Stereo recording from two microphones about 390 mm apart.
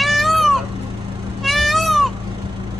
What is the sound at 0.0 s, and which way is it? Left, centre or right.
Cat, centre.